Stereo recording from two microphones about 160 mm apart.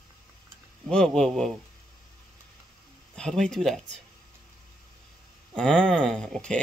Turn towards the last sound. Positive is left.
turn(degrees=5)  # may be behind; listen again after turning